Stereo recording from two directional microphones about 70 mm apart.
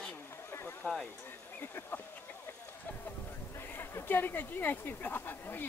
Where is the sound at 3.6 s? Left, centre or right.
Left.